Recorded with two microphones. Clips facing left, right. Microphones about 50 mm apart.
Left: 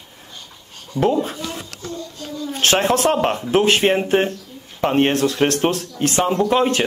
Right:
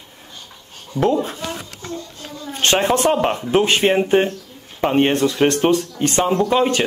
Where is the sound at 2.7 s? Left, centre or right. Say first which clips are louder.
Right 1 dB; centre.